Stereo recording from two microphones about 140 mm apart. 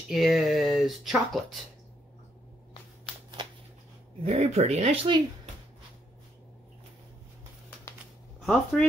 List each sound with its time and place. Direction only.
0.1 s speech: centre (ahead or behind)
4.2 s speech: 50° right (ahead or behind)
8.4 s speech: 10° left (ahead or behind)